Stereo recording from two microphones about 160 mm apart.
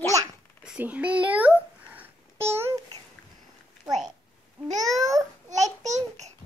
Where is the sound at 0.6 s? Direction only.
10° right (ahead or behind).